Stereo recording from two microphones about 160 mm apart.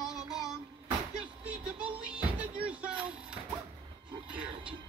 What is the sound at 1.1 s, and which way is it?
Speech, 5° right (ahead or behind).